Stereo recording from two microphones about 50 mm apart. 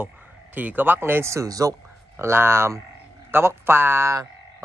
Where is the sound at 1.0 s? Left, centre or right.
Right.